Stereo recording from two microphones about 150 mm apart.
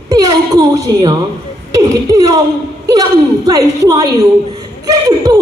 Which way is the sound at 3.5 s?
25° right (ahead or behind).